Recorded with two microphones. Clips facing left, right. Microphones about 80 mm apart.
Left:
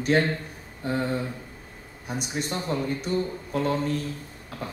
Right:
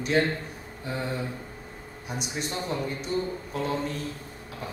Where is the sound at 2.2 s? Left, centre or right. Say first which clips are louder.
Left 2 dB; left.